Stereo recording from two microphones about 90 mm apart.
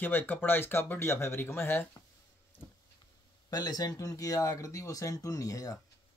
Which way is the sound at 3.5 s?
45° left (ahead or behind).